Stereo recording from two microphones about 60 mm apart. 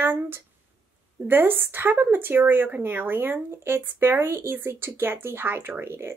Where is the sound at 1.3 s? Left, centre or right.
Right.